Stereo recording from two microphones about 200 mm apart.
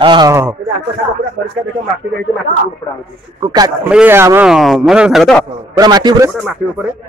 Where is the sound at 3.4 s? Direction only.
20° right (ahead or behind).